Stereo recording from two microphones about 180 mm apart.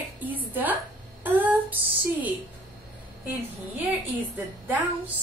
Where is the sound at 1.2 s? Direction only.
10° right (ahead or behind).